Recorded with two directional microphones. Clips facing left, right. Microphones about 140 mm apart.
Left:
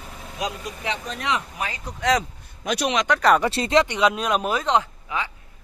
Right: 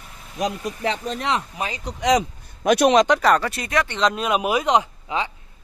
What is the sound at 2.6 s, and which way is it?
Speech, 55° right (ahead or behind).